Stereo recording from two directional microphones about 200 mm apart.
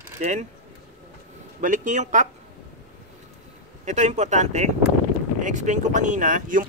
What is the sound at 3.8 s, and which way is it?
Speech, 35° right (ahead or behind).